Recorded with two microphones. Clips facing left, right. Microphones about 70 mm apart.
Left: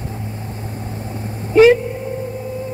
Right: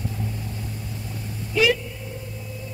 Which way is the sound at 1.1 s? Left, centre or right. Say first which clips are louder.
Left 11 dB; left.